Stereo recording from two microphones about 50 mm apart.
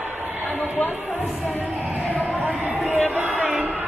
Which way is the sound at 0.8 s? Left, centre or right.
Left.